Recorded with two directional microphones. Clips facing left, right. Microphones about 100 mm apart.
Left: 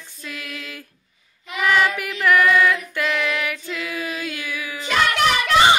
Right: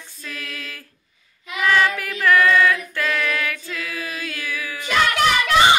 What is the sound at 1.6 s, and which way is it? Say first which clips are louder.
Child singing: even; 15° left (ahead or behind).